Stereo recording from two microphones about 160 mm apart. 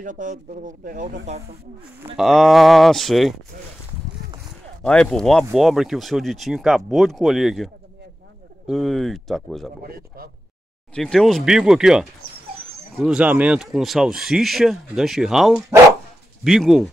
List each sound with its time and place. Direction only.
0.0 s speech: 55° right (ahead or behind)
1.2 s speech: 40° right (ahead or behind)
2.1 s speech: centre (ahead or behind)
4.8 s speech: 5° left (ahead or behind)
9.8 s speech: 70° right (ahead or behind)
11.0 s speech: 5° left (ahead or behind)